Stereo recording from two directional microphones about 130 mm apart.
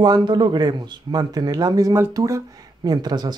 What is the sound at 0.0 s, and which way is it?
Speech, 35° right (ahead or behind).